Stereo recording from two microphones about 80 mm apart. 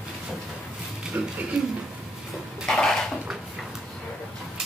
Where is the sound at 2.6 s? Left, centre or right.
Centre.